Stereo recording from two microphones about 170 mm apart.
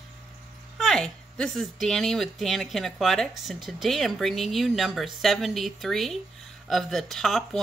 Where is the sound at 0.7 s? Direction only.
5° left (ahead or behind).